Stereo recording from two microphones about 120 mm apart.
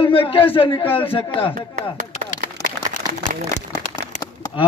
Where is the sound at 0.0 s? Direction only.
50° left (ahead or behind).